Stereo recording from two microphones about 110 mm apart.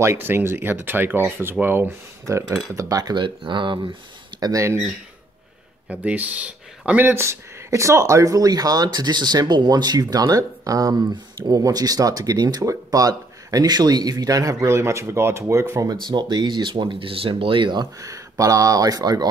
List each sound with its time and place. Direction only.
0.0 s speech: 25° right (ahead or behind); by 3.9 s 45° right (ahead or behind)
4.4 s speech: 30° right (ahead or behind)
5.9 s speech: 15° right (ahead or behind); by 16.0 s 30° right (ahead or behind)
16.1 s speech: 40° right (ahead or behind)
18.0 s speech: 30° right (ahead or behind)